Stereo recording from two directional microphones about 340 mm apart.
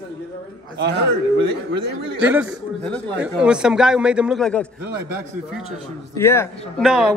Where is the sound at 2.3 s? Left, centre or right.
Centre.